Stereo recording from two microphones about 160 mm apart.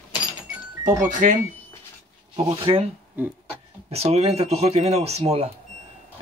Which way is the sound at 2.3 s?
35° right (ahead or behind).